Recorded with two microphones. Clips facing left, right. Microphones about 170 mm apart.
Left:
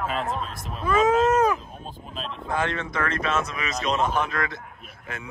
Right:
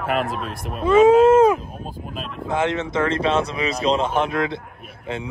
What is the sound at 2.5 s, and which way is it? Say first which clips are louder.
Speech: right 5 dB; 20° right (ahead or behind).